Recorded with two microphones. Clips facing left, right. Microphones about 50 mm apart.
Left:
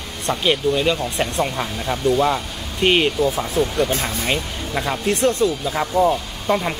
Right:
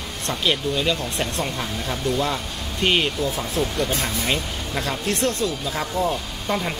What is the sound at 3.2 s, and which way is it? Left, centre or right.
Speech, left.